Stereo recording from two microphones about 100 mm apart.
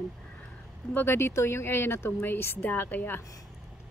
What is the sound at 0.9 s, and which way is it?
Speech, 20° left (ahead or behind).